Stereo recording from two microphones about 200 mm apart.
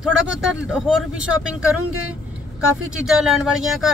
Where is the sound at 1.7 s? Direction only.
90° right.